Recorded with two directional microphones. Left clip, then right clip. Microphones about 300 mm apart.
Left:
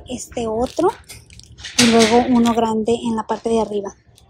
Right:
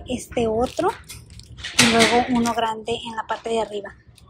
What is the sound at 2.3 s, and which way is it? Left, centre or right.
Speech, centre.